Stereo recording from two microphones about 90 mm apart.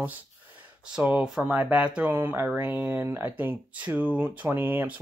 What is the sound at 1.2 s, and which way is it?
Speech, 5° right (ahead or behind).